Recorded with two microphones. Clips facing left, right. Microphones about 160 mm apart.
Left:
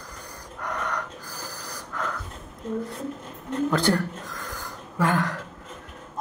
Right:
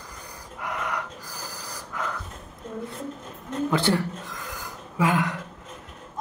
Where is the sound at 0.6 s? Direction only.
5° right (ahead or behind).